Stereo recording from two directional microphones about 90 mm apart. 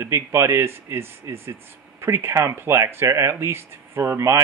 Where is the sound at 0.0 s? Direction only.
30° right (ahead or behind).